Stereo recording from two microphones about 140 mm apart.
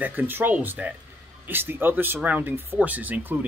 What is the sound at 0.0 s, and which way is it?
Speech, 15° right (ahead or behind).